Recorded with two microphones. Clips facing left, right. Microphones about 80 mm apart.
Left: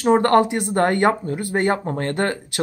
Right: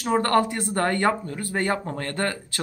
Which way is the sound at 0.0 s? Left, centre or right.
Left.